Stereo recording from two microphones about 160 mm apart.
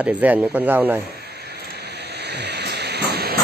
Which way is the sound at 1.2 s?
90° right.